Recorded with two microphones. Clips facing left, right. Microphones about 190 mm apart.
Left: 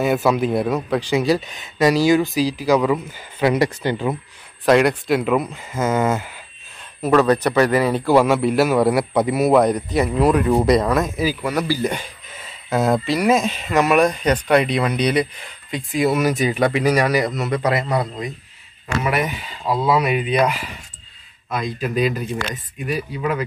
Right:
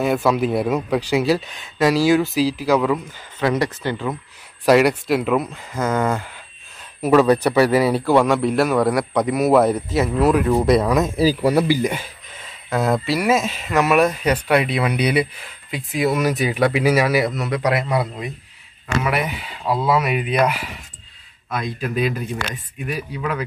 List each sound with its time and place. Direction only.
0.0 s speech: centre (ahead or behind)
4.6 s speech: 5° right (ahead or behind)
7.0 s speech: 10° right (ahead or behind)
8.0 s speech: centre (ahead or behind)
11.1 s speech: 35° right (ahead or behind)
11.6 s speech: 15° right (ahead or behind)
12.6 s speech: centre (ahead or behind)